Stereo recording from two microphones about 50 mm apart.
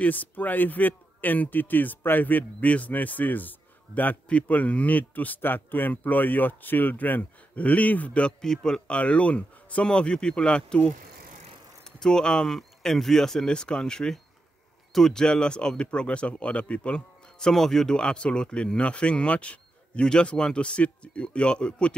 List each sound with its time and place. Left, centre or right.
0.0 s speech: left
8.4 s speech: centre
8.8 s speech: left